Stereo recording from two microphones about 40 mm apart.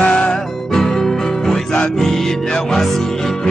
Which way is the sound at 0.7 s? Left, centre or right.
Centre.